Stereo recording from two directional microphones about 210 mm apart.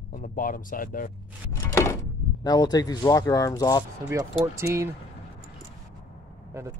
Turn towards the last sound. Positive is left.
turn(degrees=-15)  # may be behind; listen again after turning